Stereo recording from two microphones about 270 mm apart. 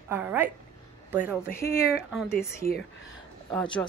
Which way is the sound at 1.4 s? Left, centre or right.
Centre.